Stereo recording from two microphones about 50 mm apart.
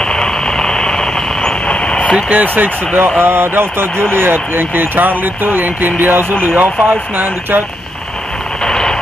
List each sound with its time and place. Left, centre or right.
0.0 s vehicle: centre
2.2 s speech: right
8.6 s a sound: centre